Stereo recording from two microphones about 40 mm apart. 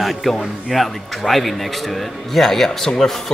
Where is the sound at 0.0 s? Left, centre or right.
Centre.